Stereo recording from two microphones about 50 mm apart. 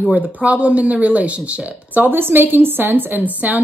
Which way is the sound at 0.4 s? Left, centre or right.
Right.